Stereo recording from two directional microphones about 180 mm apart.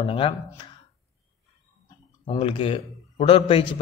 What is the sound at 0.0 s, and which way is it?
Speech, 30° left (ahead or behind).